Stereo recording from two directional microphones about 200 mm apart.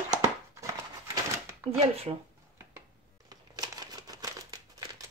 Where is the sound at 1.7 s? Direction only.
30° right (ahead or behind).